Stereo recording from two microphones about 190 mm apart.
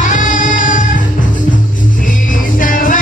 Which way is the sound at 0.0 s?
45° left (ahead or behind).